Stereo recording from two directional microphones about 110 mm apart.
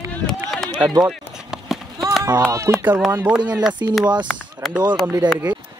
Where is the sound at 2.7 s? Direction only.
30° right (ahead or behind).